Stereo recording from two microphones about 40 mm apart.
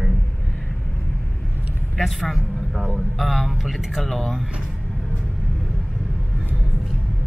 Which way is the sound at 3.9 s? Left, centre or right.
Centre.